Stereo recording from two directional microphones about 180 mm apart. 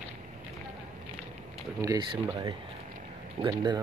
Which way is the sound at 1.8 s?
20° right (ahead or behind).